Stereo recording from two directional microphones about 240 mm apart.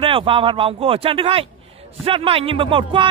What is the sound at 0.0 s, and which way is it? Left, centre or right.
Speech, right.